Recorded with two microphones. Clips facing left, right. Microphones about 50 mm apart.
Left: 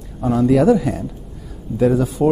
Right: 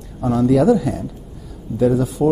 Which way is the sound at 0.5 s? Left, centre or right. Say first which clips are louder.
Even; left.